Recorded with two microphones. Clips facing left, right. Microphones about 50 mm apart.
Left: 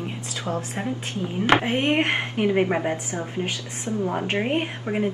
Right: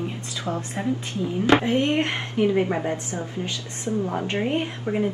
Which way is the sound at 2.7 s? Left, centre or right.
Left.